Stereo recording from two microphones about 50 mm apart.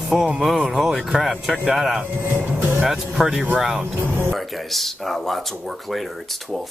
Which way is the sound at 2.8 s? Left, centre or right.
Centre.